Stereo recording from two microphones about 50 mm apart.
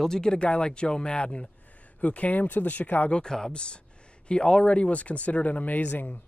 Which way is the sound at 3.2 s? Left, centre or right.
Centre.